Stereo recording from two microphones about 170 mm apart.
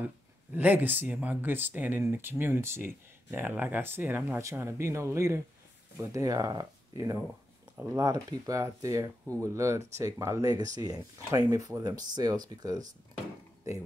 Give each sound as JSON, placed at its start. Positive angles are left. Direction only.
{"t": 0.6, "sound": "speech", "side_deg": -10}
{"t": 7.7, "sound": "speech", "side_deg": -10}
{"t": 8.0, "sound": "speech", "side_deg": -20}